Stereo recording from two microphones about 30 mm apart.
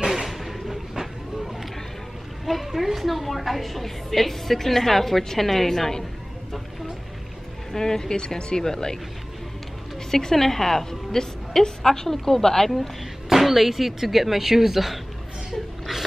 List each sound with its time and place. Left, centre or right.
0.1 s a sound: centre
2.4 s a woman's voice: centre
7.7 s speech: centre
10.1 s a woman's voice: centre
13.3 s speech: centre